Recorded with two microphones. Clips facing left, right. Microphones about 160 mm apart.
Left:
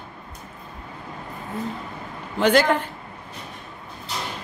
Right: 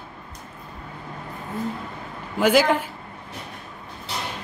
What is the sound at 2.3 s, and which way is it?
Speech, 5° right (ahead or behind).